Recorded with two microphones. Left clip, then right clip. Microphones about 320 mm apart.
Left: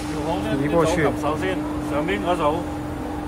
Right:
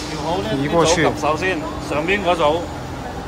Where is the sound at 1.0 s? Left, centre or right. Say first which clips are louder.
Right 4 dB; right.